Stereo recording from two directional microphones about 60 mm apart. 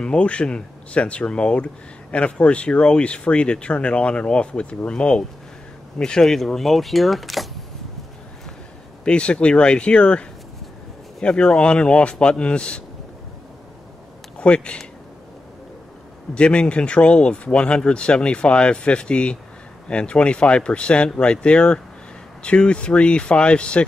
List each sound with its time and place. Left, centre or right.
0.0 s speech: centre
9.0 s speech: centre
14.4 s speech: centre
16.3 s speech: centre